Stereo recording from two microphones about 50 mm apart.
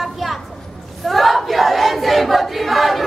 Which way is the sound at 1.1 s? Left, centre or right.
Centre.